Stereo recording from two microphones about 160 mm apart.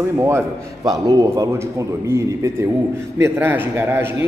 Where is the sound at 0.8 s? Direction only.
25° right (ahead or behind).